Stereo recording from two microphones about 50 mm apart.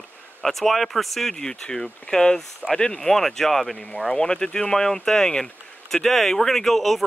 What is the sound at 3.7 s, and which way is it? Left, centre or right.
Speech, left.